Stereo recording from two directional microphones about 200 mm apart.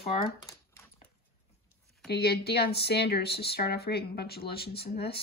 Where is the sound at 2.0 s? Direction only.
55° left (ahead or behind).